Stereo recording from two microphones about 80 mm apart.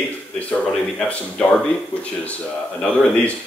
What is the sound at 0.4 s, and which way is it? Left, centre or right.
Speech, centre.